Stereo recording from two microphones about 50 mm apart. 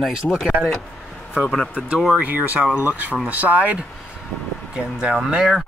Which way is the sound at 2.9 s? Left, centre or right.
Right.